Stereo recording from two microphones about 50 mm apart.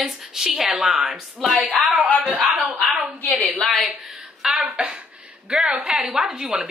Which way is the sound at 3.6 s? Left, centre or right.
Centre.